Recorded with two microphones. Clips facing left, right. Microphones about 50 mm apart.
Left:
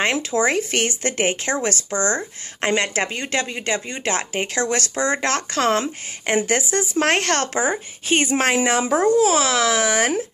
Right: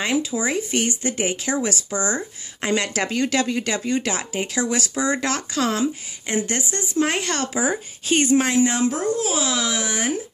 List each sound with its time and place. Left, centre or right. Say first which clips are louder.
0.0 s speech: left 3 dB; left
1.3 s a woman's voice: left 1 dB; left
4.1 s speech: left 2 dB; left
6.2 s speech: left 4 dB; left
8.1 s a child's voice: even; left